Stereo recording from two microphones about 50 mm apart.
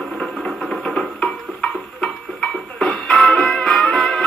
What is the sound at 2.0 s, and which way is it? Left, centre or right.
Music, centre.